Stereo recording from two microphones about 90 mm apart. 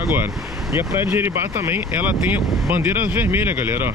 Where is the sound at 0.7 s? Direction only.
25° right (ahead or behind).